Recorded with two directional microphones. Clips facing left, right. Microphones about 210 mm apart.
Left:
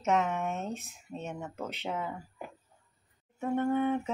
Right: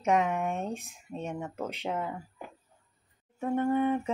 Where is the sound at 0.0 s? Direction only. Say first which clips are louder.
Right 2 dB; 10° right (ahead or behind).